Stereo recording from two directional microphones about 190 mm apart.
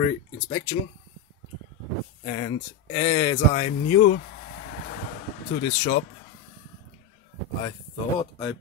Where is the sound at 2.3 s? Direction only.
35° left (ahead or behind).